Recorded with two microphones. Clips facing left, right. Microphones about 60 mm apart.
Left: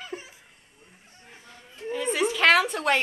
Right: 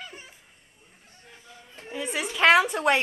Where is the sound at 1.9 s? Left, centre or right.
Centre.